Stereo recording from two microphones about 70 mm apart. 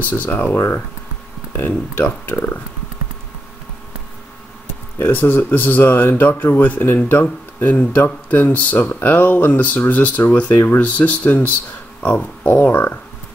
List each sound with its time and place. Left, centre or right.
0.0 s speech: left
4.9 s speech: left
12.4 s speech: left